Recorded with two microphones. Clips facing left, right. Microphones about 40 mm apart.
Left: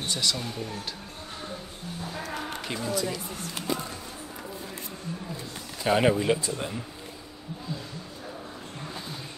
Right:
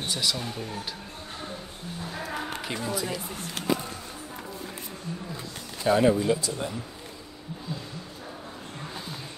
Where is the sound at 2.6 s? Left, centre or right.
Centre.